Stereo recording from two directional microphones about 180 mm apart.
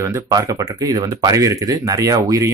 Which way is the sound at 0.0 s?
20° right (ahead or behind).